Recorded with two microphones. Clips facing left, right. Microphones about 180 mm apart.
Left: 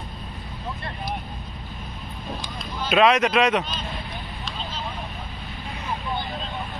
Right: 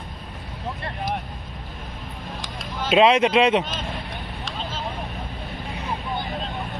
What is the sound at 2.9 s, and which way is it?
Speech, 25° right (ahead or behind).